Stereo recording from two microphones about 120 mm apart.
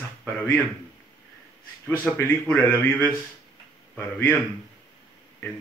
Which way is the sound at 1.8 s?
15° left (ahead or behind).